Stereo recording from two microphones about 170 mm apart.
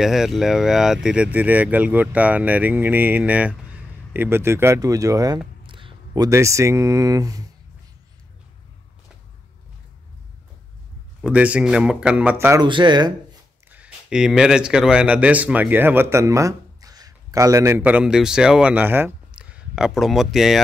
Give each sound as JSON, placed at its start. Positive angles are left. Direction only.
{"t": 0.0, "sound": "speech", "side_deg": 0}
{"t": 11.2, "sound": "speech", "side_deg": -5}
{"t": 12.6, "sound": "speech", "side_deg": -25}
{"t": 13.7, "sound": "a man's voice", "side_deg": -10}